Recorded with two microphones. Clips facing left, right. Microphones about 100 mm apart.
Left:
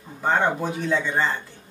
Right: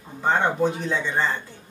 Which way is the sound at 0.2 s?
5° left (ahead or behind).